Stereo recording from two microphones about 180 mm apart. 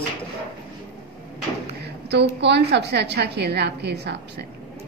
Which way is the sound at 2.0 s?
70° right (ahead or behind).